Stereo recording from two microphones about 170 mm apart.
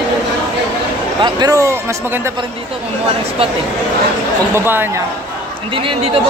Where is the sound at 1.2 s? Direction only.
20° right (ahead or behind).